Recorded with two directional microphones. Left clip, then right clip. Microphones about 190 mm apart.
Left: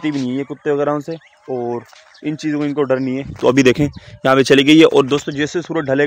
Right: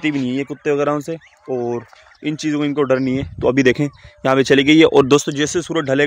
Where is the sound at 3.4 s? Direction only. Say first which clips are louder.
Left 3 dB; 10° left (ahead or behind).